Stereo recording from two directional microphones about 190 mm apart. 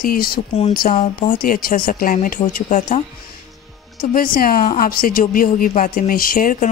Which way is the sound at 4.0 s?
50° left (ahead or behind).